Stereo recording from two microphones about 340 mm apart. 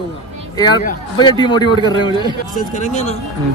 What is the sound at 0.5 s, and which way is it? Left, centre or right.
A man's voice, centre.